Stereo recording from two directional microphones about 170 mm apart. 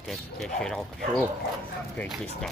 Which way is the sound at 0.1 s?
Centre (ahead or behind).